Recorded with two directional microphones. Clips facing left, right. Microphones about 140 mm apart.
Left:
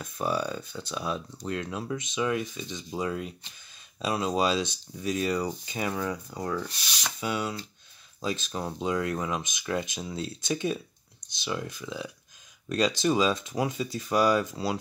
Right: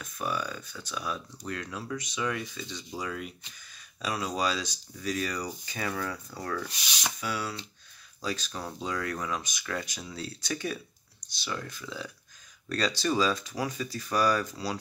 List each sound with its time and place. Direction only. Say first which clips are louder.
0.0 s speech: left 4 dB; 30° left (ahead or behind)
6.6 s rub: left 1 dB; centre (ahead or behind)
7.2 s speech: left 5 dB; 20° left (ahead or behind)